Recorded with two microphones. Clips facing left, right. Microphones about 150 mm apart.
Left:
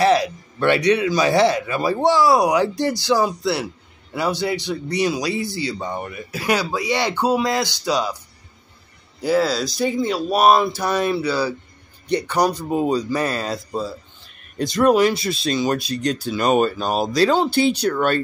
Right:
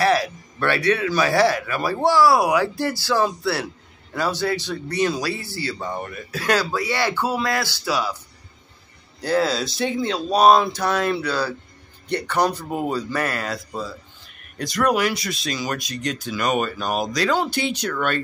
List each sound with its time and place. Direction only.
0.0 s speech: 20° left (ahead or behind)
9.2 s speech: 5° left (ahead or behind); by 18.2 s 35° left (ahead or behind)